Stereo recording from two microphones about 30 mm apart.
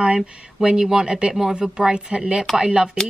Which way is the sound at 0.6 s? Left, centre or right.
Centre.